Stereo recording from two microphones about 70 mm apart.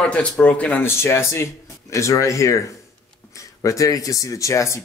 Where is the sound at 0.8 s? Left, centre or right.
Left.